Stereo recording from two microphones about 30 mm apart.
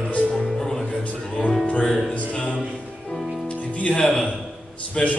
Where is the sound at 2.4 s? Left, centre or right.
Left.